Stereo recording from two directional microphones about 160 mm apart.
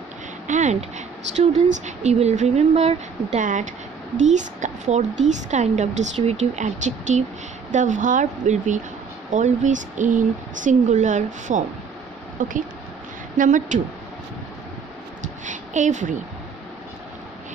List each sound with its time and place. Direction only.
0.5 s a woman's voice: 45° right (ahead or behind)
3.3 s a woman's voice: 50° right (ahead or behind)
15.4 s a woman's voice: 50° right (ahead or behind)